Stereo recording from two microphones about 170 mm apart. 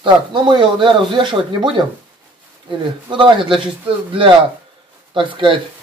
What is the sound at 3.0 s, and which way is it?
Speech, 30° right (ahead or behind).